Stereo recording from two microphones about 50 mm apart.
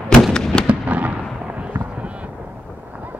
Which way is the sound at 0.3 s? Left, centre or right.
Centre.